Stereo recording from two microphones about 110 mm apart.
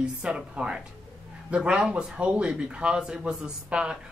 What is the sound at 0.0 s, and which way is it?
Speech, 10° right (ahead or behind).